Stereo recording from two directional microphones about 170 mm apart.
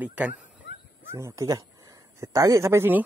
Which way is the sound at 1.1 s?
20° right (ahead or behind).